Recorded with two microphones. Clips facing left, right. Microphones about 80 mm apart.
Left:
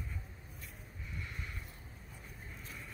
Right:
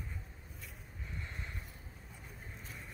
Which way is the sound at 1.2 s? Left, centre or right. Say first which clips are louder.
Left 1 dB; right.